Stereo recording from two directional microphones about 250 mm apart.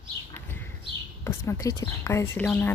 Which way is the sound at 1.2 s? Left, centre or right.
Centre.